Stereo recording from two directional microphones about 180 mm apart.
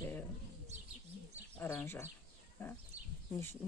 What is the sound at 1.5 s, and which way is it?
Speech, 10° left (ahead or behind).